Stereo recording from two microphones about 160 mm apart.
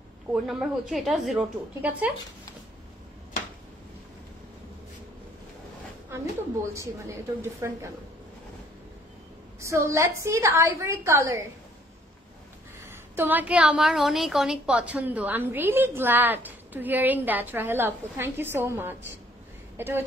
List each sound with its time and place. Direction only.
0.3 s a woman's voice: 5° right (ahead or behind)
6.7 s a woman's voice: 20° right (ahead or behind)
9.6 s a woman's voice: 20° right (ahead or behind)
12.8 s a woman's voice: 15° right (ahead or behind)